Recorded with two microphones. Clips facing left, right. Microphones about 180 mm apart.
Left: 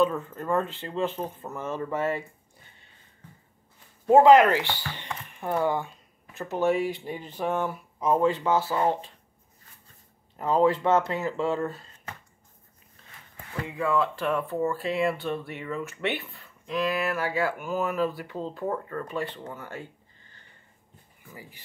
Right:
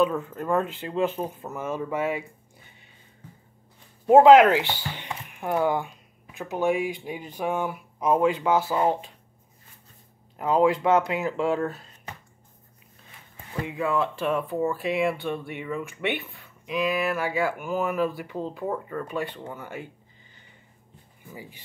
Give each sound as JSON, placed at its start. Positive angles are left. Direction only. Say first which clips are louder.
{"t": 0.0, "sound": "speech", "louder": "right 1 dB", "side_deg": -10}
{"t": 4.0, "sound": "a sound", "louder": "right 2 dB", "side_deg": -15}
{"t": 4.4, "sound": "speech", "louder": "right 3 dB", "side_deg": -15}
{"t": 10.3, "sound": "speech", "louder": "right 1 dB", "side_deg": -5}
{"t": 13.5, "sound": "speech", "louder": "right 1 dB", "side_deg": -15}
{"t": 16.7, "sound": "speech", "louder": "right 2 dB", "side_deg": -15}
{"t": 21.3, "sound": "speech", "louder": "right 4 dB", "side_deg": -20}